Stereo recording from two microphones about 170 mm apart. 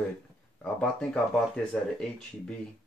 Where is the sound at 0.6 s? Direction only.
5° left (ahead or behind).